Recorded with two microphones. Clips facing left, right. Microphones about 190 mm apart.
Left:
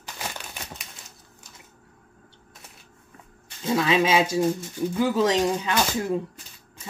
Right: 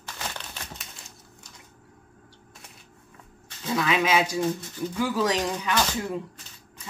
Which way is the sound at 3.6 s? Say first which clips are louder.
Left 3 dB; 25° left (ahead or behind).